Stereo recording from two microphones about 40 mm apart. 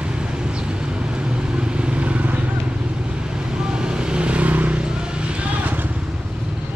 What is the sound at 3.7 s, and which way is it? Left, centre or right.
Vehicle, right.